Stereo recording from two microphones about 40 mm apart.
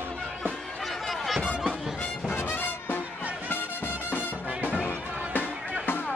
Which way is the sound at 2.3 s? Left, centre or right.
Left.